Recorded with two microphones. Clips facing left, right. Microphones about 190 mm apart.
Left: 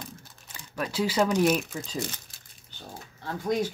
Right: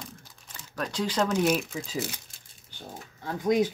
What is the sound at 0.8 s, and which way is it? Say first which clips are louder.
Speech: left 2 dB; 5° left (ahead or behind).